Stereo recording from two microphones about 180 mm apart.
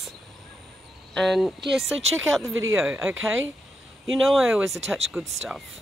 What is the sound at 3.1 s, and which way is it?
Speech, 90° right.